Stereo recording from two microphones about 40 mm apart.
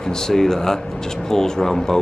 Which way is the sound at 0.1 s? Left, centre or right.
Centre.